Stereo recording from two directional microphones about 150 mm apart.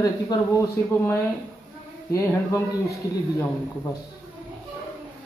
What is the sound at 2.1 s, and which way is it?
Speech, 20° left (ahead or behind).